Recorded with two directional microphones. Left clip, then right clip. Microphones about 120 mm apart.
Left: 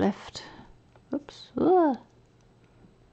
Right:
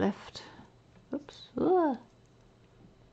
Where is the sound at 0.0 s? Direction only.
35° left (ahead or behind).